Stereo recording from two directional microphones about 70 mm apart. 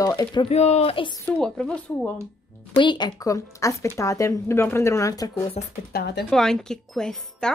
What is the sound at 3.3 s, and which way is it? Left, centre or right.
A woman's voice, left.